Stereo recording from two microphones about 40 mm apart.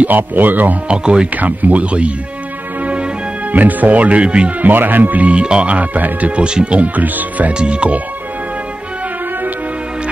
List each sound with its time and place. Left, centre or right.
0.0 s speech: right
0.8 s speech: right
1.3 s speech: right
2.8 s music: right
3.5 s speech: right
4.7 s speech: right
5.2 s speech: right
6.3 s speech: right
7.0 s speech: right
7.5 s speech: right